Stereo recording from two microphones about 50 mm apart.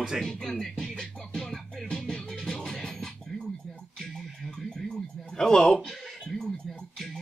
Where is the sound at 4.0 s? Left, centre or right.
Centre.